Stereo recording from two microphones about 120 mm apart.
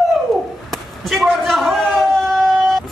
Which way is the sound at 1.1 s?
Centre (ahead or behind).